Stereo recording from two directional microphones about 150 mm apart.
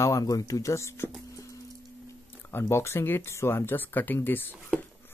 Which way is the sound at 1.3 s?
20° left (ahead or behind).